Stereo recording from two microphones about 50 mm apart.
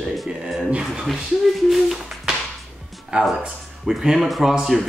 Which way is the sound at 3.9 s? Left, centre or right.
Centre.